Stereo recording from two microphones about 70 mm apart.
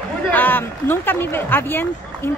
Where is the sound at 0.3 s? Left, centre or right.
Left.